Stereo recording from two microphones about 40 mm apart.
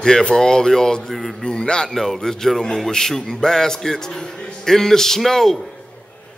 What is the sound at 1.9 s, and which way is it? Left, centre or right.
A man's voice, centre.